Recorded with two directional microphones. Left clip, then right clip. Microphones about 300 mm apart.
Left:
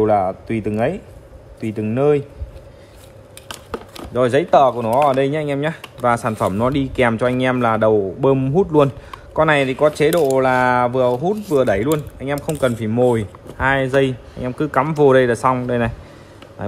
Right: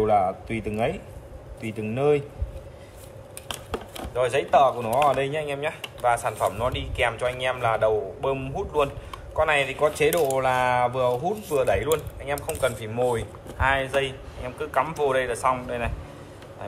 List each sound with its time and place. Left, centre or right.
0.0 s speech: left
4.1 s speech: left